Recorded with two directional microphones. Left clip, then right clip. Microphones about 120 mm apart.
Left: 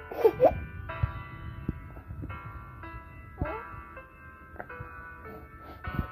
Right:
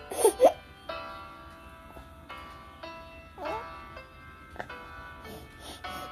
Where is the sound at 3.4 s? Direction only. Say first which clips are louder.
Right 2 dB; 35° right (ahead or behind).